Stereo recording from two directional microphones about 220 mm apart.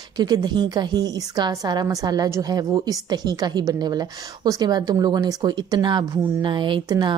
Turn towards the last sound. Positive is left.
turn(degrees=-20)  # may be behind; listen again after turning